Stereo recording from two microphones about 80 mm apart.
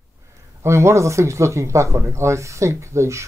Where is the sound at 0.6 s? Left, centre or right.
Right.